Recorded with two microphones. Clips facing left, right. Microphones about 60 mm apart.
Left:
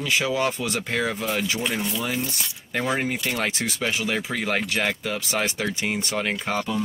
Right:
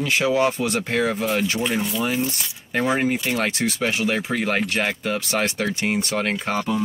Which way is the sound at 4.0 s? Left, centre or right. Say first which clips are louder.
Right 4 dB; right.